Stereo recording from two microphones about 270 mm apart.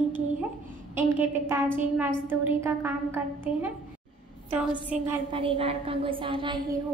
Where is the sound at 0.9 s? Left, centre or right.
Centre.